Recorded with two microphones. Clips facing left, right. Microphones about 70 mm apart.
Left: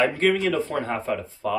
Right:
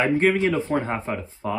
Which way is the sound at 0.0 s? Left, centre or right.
Right.